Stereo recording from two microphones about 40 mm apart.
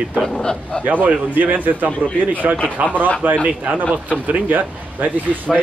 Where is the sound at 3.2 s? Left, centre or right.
Right.